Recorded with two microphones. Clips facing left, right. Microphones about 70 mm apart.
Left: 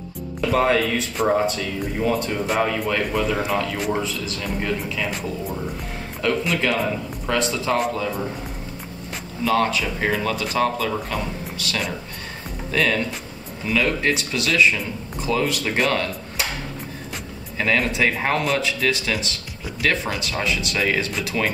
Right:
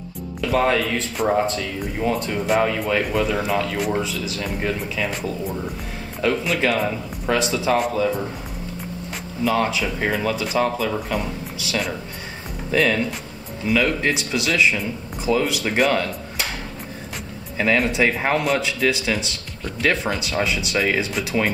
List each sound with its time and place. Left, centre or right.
0.4 s a man's voice: centre
6.2 s a man's voice: centre
9.4 s a man's voice: centre
17.6 s a man's voice: centre